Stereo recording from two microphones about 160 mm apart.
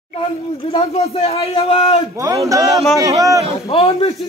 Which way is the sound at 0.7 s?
40° left (ahead or behind).